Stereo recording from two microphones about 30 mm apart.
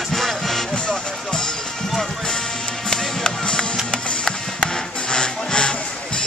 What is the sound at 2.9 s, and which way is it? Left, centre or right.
Music, left.